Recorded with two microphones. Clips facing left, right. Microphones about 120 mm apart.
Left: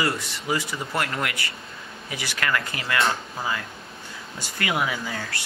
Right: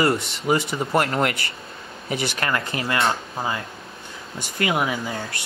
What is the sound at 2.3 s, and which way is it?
Speech, 30° right (ahead or behind).